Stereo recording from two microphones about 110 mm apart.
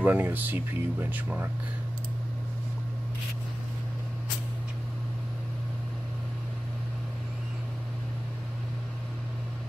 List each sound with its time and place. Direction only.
0.0 s speech: 15° right (ahead or behind)